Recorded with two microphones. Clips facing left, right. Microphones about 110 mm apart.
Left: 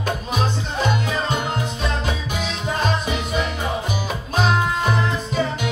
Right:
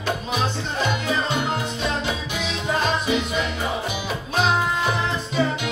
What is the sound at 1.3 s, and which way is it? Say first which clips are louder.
Music: even; 45° left (ahead or behind).